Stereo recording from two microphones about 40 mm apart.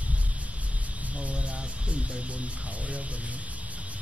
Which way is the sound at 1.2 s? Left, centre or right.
Right.